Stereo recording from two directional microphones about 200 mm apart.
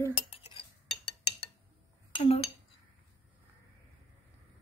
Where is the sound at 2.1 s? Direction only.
30° left (ahead or behind).